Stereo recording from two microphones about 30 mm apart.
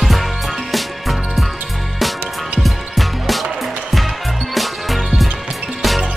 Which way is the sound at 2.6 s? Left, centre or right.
Centre.